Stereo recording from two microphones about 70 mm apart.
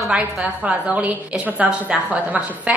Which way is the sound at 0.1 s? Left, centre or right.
Centre.